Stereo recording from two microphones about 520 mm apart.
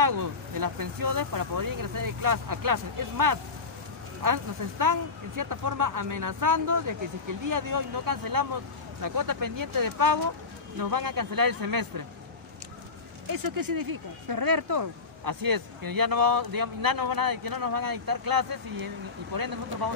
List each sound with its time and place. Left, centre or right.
0.0 s speech: right
13.3 s speech: right